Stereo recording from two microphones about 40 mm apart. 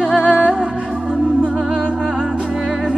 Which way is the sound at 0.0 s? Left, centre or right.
Right.